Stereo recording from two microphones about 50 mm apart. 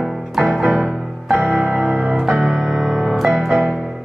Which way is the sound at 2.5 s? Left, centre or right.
Centre.